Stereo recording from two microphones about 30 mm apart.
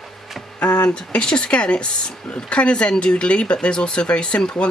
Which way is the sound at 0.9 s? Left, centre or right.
Left.